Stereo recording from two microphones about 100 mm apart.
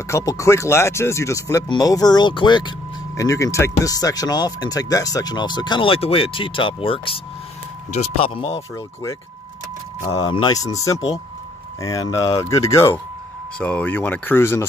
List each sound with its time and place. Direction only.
0.1 s speech: 35° left (ahead or behind); by 2.7 s 50° left (ahead or behind)
3.2 s speech: 35° left (ahead or behind); by 7.2 s 65° left (ahead or behind)
7.9 s speech: 80° left
10.5 s speech: 35° left (ahead or behind)
13.6 s speech: 15° left (ahead or behind)